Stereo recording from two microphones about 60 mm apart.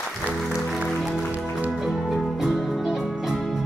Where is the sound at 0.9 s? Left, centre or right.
Centre.